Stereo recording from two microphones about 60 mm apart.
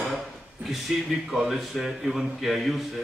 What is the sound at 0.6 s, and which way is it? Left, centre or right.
A man's voice, centre.